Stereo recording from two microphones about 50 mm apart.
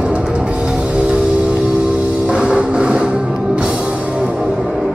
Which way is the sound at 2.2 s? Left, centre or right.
Centre.